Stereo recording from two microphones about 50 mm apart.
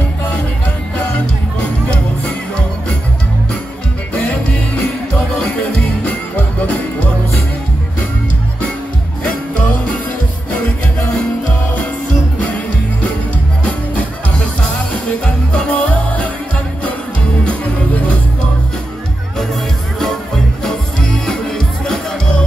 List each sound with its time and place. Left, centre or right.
4.1 s music: left
5.6 s music: left
15.2 s music: left
20.6 s music: centre